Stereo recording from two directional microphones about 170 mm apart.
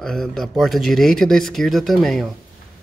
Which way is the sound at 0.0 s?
5° left (ahead or behind).